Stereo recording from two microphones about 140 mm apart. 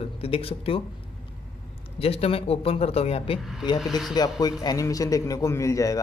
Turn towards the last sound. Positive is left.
turn(degrees=25)  # may be behind; listen again after turning